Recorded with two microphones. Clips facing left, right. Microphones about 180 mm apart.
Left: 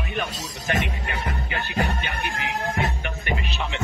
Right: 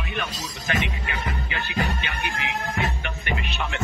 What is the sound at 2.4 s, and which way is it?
Music, 40° left (ahead or behind).